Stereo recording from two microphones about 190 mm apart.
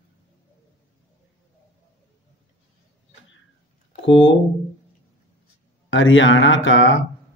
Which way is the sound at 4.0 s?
75° left (ahead or behind).